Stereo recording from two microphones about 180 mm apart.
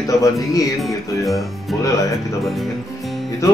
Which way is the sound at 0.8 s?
Centre (ahead or behind).